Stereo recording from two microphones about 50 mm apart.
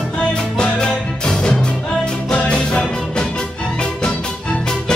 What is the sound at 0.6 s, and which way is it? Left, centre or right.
Music, centre.